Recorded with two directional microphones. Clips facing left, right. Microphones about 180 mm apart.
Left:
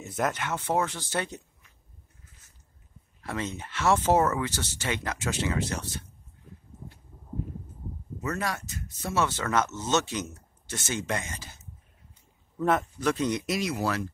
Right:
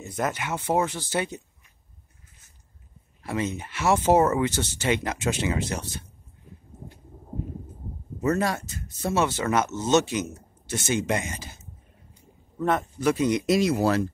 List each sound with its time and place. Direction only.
0.0 s speech: centre (ahead or behind)
3.3 s speech: 10° right (ahead or behind)
8.2 s speech: 30° right (ahead or behind)
9.2 s speech: 15° right (ahead or behind)
12.5 s speech: centre (ahead or behind)
13.5 s speech: 30° right (ahead or behind)